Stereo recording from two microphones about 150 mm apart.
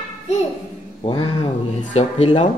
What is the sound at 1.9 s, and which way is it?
Speech, 40° left (ahead or behind).